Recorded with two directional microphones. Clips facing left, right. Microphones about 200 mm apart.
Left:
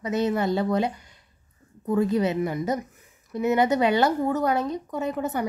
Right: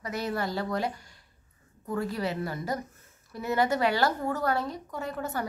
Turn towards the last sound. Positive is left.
turn(degrees=20)  # may be behind; listen again after turning